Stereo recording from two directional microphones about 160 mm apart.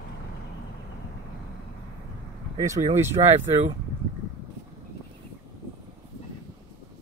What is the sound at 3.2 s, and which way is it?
Speech, 35° right (ahead or behind).